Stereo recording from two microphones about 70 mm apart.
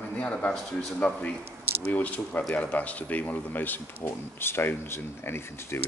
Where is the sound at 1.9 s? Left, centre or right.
Left.